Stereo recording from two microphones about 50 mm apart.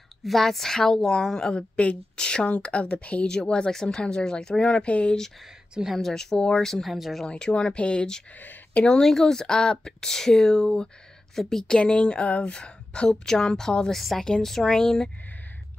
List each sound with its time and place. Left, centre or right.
0.2 s speech: centre
1.5 s a woman's voice: left
3.3 s speech: centre
5.4 s speech: centre
6.0 s speech: centre
7.2 s speech: centre
8.4 s a sound: left
8.8 s a woman's voice: centre
11.6 s a woman's voice: centre
13.9 s a woman's voice: centre